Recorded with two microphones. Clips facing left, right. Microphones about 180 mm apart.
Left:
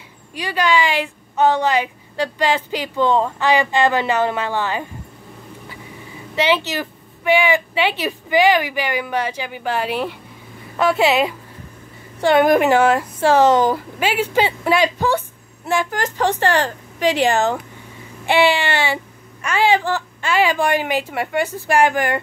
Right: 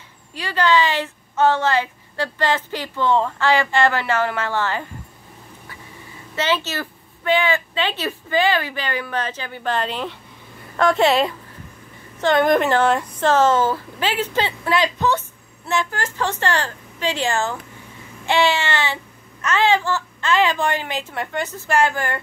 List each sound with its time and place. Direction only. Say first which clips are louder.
0.3 s a woman's voice: even; 15° left (ahead or behind)
6.3 s a woman's voice: left 4 dB; 15° left (ahead or behind)
16.0 s a woman's voice: left 5 dB; 15° left (ahead or behind)